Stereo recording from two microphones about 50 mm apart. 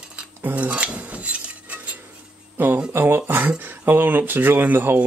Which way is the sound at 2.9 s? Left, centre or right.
Right.